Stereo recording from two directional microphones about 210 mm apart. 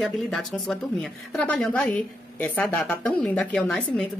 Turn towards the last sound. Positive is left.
turn(degrees=5)  # may be behind; listen again after turning